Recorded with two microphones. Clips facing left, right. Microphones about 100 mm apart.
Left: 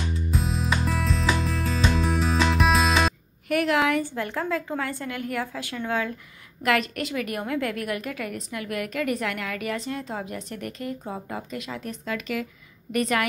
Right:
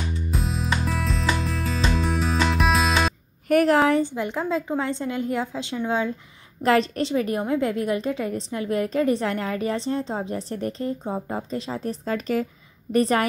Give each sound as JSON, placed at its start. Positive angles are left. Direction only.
{"t": 0.3, "sound": "music", "side_deg": 0}
{"t": 3.4, "sound": "a sound", "side_deg": -40}
{"t": 4.0, "sound": "a woman's voice", "side_deg": -15}